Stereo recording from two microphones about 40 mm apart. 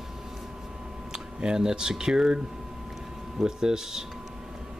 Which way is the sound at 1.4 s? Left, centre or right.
Centre.